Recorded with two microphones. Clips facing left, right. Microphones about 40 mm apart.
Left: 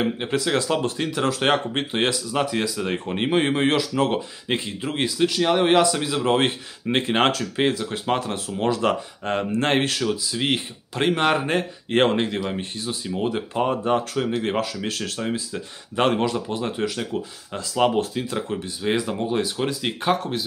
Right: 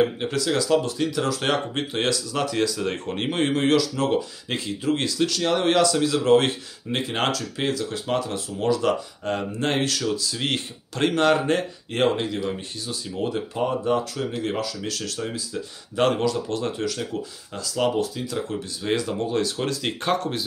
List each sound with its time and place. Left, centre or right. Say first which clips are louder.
0.0 s speech: right 1 dB; left
11.9 s speech: left 3 dB; left
16.4 s speech: left 1 dB; centre; by 18.4 s left
18.5 s speech: left 2 dB; centre